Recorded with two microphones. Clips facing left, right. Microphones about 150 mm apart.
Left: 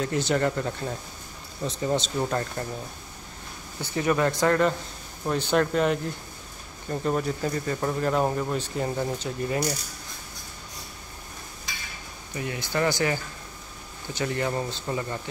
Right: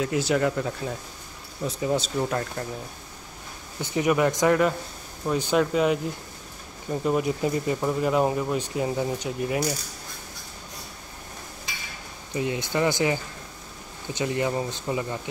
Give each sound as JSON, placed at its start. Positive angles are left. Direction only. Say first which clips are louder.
{"t": 0.0, "sound": "speech", "louder": "right 1 dB", "side_deg": -5}
{"t": 3.8, "sound": "speech", "louder": "right 2 dB", "side_deg": -15}
{"t": 12.4, "sound": "speech", "louder": "right 3 dB", "side_deg": -20}